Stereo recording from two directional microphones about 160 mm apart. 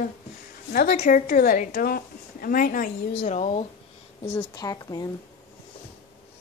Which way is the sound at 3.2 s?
40° left (ahead or behind).